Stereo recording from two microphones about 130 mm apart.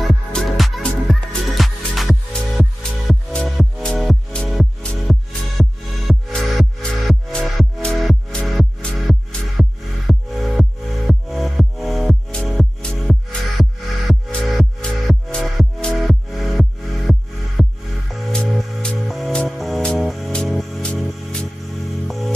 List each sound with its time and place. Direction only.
0.0 s music: centre (ahead or behind)